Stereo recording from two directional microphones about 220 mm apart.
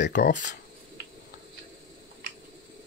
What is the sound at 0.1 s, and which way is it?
Speech, 35° left (ahead or behind).